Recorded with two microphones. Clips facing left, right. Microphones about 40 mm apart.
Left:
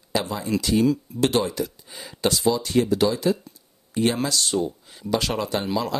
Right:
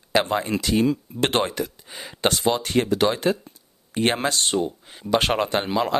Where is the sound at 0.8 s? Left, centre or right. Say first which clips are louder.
Left 1 dB; right.